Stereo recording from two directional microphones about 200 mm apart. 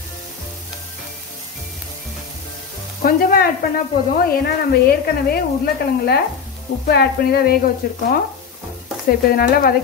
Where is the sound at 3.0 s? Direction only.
45° left (ahead or behind).